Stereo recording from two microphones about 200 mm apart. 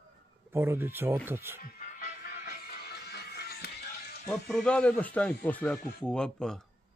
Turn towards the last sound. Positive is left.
turn(degrees=5)  # may be behind; listen again after turning